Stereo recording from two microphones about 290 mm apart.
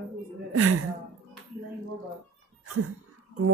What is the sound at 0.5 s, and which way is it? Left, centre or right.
Speech, right.